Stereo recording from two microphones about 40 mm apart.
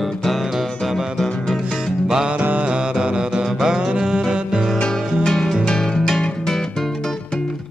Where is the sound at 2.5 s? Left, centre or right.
Right.